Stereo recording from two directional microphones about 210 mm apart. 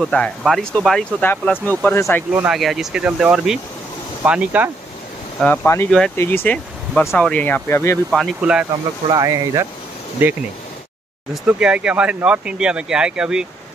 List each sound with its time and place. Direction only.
0.0 s speech: centre (ahead or behind)
2.3 s speech: 5° right (ahead or behind)
5.4 s speech: 5° left (ahead or behind)
8.1 s speech: 5° right (ahead or behind)
9.1 s speech: 15° right (ahead or behind)
11.4 s speech: 5° right (ahead or behind)